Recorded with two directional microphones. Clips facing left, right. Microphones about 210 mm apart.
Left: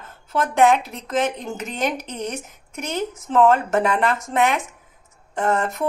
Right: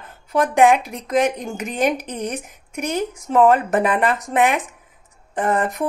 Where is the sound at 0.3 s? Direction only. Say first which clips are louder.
Right 2 dB; 15° right (ahead or behind).